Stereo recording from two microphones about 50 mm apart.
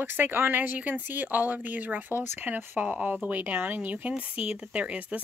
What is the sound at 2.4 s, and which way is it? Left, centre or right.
Speech, right.